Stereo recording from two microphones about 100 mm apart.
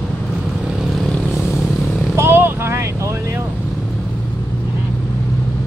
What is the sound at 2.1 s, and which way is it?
Vehicle, 25° right (ahead or behind).